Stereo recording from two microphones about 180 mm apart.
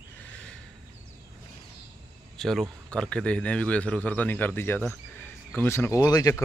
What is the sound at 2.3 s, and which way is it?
A man's voice, centre (ahead or behind).